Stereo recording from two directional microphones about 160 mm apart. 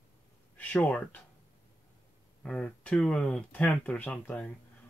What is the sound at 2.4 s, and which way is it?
Speech, 5° left (ahead or behind).